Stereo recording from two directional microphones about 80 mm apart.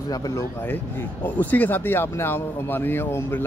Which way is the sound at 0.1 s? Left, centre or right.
Left.